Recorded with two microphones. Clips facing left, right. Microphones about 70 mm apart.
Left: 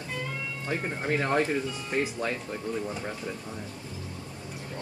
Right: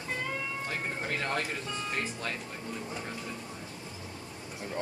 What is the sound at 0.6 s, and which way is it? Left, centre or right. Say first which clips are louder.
Speech: left 9 dB; centre.